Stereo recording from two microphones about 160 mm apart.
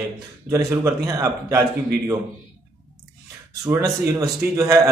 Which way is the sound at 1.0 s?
20° right (ahead or behind).